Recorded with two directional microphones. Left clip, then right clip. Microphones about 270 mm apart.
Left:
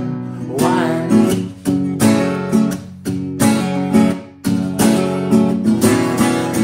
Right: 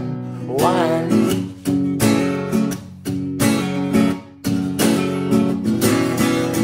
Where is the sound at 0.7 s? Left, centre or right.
Right.